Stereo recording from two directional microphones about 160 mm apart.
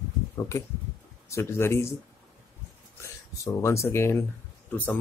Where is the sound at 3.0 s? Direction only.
15° left (ahead or behind).